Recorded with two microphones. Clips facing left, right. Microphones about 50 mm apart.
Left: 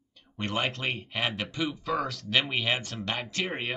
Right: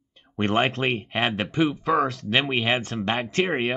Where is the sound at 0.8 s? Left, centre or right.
Right.